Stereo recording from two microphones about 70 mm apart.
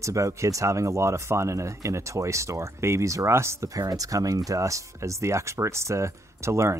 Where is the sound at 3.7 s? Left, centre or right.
Right.